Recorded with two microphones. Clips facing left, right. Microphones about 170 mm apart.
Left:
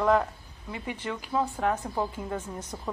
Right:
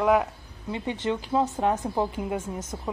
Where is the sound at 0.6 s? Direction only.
25° right (ahead or behind).